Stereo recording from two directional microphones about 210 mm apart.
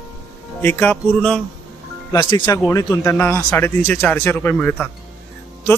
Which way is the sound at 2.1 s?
20° left (ahead or behind).